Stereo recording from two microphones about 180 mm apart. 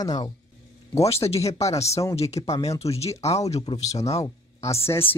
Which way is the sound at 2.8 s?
35° left (ahead or behind).